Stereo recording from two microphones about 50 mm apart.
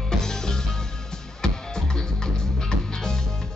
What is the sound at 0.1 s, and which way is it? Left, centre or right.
Music, centre.